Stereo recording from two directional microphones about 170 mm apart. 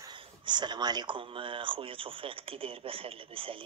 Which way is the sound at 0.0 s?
25° right (ahead or behind).